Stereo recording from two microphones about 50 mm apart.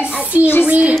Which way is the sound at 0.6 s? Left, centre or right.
Right.